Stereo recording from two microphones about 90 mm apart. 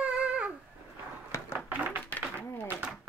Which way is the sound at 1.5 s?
15° right (ahead or behind).